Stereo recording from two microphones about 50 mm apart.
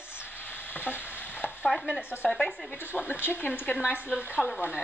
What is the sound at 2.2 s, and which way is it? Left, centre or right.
Speech, centre.